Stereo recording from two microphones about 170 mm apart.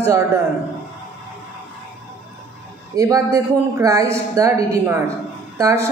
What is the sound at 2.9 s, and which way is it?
A woman's voice, 20° right (ahead or behind).